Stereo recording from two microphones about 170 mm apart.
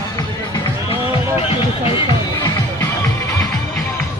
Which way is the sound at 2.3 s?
20° left (ahead or behind).